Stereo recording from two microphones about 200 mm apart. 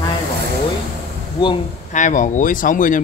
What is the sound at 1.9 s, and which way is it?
Speech, 40° left (ahead or behind).